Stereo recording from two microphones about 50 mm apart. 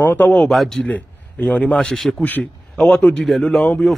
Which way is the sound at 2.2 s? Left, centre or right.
Left.